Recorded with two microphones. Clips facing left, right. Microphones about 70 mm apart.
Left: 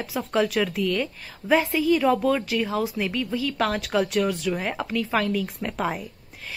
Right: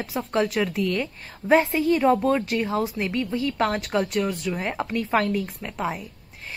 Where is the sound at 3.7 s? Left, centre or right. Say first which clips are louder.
Left 1 dB; centre.